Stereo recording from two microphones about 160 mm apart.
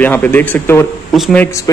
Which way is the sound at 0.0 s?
10° left (ahead or behind).